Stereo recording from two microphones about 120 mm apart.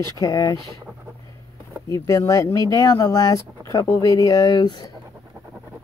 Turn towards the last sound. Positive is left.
turn(degrees=35)  # may be behind; listen again after turning